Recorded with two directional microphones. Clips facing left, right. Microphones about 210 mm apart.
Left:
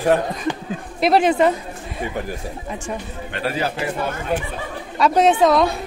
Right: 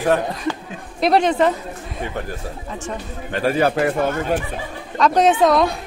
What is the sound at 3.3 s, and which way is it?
Speech, 50° right (ahead or behind).